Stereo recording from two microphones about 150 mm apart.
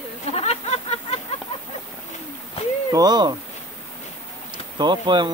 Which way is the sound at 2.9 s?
25° right (ahead or behind).